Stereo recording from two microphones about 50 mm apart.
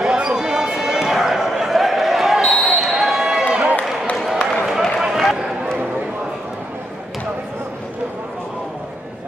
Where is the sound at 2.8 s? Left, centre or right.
Centre.